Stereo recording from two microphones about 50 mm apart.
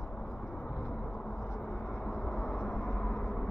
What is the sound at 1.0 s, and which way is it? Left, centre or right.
Vehicle, centre.